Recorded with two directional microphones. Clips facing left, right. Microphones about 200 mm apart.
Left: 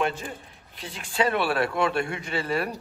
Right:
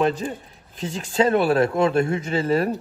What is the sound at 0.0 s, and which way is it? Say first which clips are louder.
A man's voice: right 6 dB; 35° right (ahead or behind).